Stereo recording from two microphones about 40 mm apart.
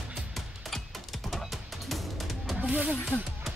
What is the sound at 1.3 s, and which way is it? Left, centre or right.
Music, centre.